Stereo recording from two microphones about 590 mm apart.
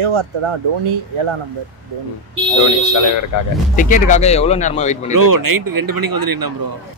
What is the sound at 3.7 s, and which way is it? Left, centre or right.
Speech, centre.